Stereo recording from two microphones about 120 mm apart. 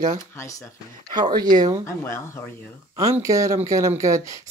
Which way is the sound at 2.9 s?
25° right (ahead or behind).